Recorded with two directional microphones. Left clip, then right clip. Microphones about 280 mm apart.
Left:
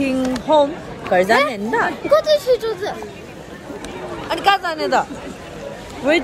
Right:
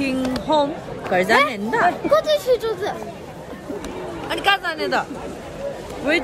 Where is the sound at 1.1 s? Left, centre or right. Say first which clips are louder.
Left 2 dB; centre.